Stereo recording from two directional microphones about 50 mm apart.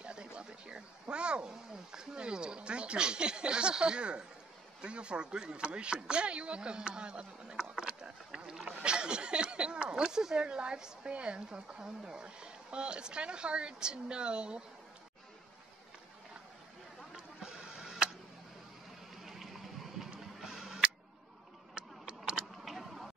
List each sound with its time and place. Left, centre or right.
0.0 s speech: centre
7.7 s rowboat: centre
8.8 s speech: centre
17.1 s vehicle: centre
19.2 s a sound: centre
20.3 s music: centre
21.7 s vehicle: centre
22.7 s tick-tock: centre